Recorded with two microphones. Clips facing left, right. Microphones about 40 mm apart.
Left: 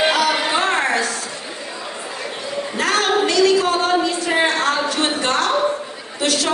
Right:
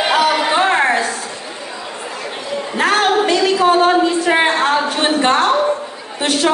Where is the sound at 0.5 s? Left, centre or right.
Right.